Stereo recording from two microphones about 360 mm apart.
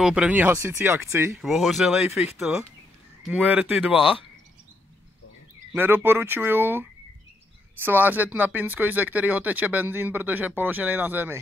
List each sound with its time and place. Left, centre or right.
0.0 s speech: centre
5.7 s speech: centre